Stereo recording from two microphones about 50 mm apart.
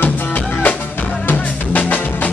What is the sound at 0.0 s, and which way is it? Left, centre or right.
Music, left.